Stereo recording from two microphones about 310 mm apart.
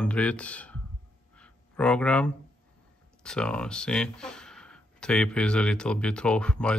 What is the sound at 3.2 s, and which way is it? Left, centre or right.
Speech, centre.